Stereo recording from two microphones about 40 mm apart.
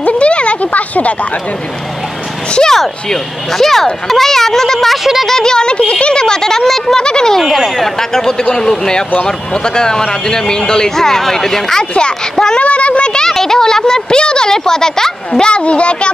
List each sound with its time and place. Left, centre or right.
0.0 s a sound: left
2.7 s speech: centre
7.3 s speech: centre
8.0 s speech: centre
11.9 s speech: left
12.5 s a sound: left
13.3 s speech: centre
15.5 s speech: left